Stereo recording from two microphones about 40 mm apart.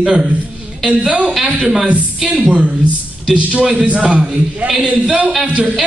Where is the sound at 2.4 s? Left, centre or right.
Right.